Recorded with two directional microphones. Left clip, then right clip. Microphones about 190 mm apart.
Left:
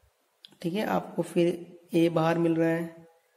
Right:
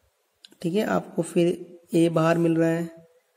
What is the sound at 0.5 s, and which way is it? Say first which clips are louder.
Speech: right 4 dB; 30° right (ahead or behind).